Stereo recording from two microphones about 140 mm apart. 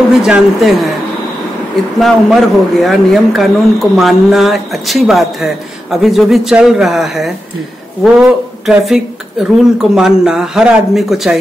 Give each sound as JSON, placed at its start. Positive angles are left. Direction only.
{"t": 0.2, "sound": "speech", "side_deg": -5}
{"t": 2.0, "sound": "speech", "side_deg": 0}